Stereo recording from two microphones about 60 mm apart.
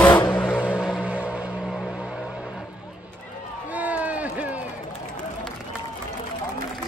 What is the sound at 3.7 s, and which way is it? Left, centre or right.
Run, right.